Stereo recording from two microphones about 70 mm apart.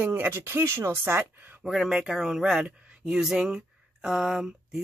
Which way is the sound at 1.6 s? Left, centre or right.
Centre.